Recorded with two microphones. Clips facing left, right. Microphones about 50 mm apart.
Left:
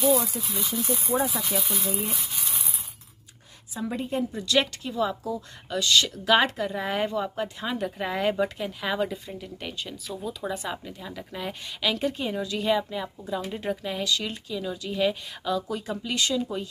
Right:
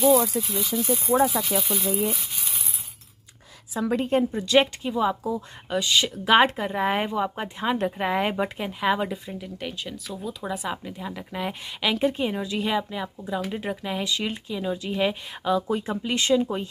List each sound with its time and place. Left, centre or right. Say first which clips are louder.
0.6 s speech: right 2 dB; centre
3.7 s a woman's voice: right 6 dB; right
4.3 s speech: right 4 dB; right
9.1 s speech: right 2 dB; centre; by 16.6 s right